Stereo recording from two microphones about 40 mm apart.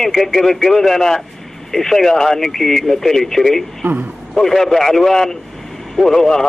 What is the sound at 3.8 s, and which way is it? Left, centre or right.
Speech, right.